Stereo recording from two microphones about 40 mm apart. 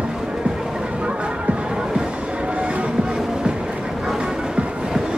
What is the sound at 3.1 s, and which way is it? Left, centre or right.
Music, centre.